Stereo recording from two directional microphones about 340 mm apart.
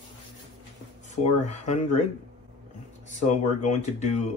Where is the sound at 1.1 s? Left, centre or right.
Centre.